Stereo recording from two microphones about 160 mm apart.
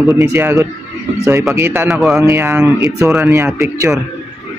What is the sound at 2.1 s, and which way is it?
A man's voice, 15° right (ahead or behind).